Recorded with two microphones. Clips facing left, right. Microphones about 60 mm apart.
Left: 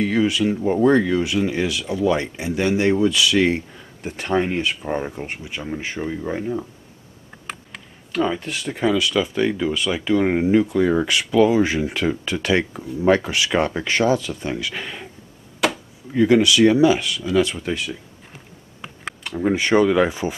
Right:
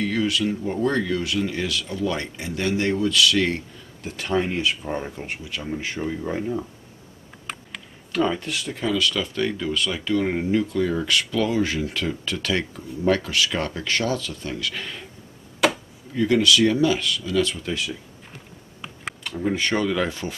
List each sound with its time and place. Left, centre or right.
0.0 s speech: centre
8.1 s speech: centre
8.7 s speech: centre
15.6 s chop: centre
16.2 s speech: centre
19.3 s speech: centre